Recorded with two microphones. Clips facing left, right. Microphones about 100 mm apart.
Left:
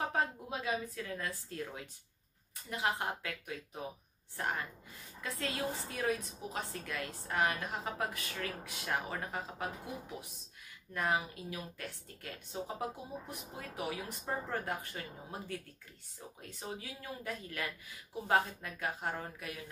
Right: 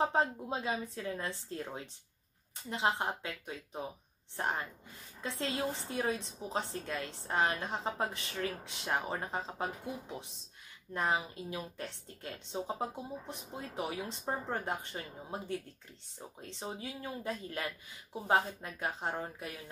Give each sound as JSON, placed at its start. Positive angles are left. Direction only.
{"t": 0.0, "sound": "a woman's voice", "side_deg": -25}
{"t": 10.9, "sound": "a woman's voice", "side_deg": -25}